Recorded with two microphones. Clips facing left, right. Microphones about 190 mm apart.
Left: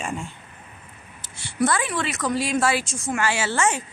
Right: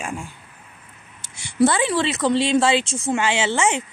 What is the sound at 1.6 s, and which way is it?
Speech, 30° right (ahead or behind).